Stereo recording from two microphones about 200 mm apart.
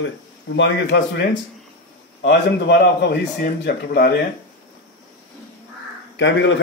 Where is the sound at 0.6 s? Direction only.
60° left (ahead or behind).